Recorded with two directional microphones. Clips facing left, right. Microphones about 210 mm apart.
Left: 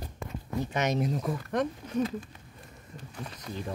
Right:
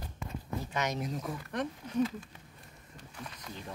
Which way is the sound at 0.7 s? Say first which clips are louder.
Left 6 dB; 25° left (ahead or behind).